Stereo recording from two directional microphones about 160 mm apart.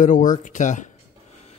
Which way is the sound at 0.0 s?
55° left (ahead or behind).